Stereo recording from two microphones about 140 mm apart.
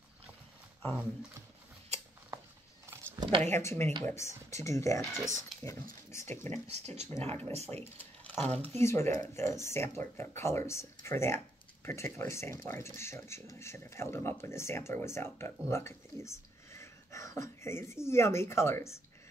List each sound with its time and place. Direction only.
3.2 s speech: 40° right (ahead or behind)
3.5 s speech: 15° left (ahead or behind)
6.7 s speech: 50° right (ahead or behind)
8.0 s a sound: 10° left (ahead or behind)
8.6 s speech: 20° left (ahead or behind)